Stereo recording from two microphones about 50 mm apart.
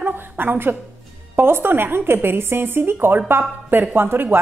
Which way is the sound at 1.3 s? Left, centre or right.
Right.